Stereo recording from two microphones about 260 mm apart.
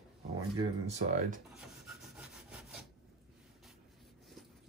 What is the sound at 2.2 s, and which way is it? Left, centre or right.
Sawing, centre.